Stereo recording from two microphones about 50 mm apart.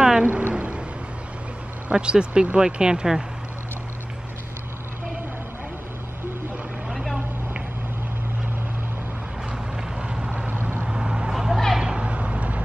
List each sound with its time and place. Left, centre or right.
0.0 s a sound: centre
0.3 s a sound: right
1.9 s speech: centre
6.9 s vehicle: centre
9.9 s vehicle: centre
10.5 s vehicle: right
10.9 s vehicle: centre
11.3 s a sound: centre
11.8 s vehicle: right